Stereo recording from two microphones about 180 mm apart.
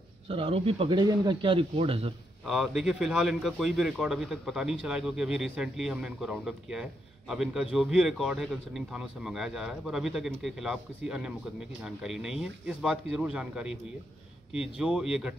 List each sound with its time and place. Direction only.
0.3 s speech: 30° right (ahead or behind)
2.4 s a man's voice: centre (ahead or behind)
14.8 s a man's voice: 5° right (ahead or behind)